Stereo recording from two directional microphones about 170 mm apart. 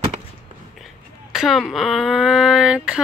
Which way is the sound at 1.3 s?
Centre (ahead or behind).